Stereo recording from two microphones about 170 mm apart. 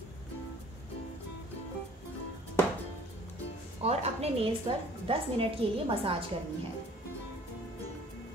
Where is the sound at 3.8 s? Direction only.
40° right (ahead or behind).